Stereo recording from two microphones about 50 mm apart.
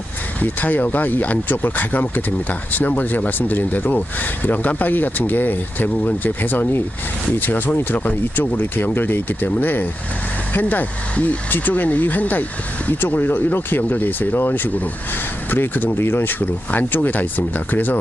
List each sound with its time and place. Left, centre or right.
0.4 s speech: left